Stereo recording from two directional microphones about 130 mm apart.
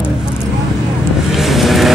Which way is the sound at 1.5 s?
Centre (ahead or behind).